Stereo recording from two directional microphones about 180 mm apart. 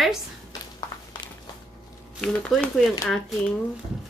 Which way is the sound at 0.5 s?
25° left (ahead or behind).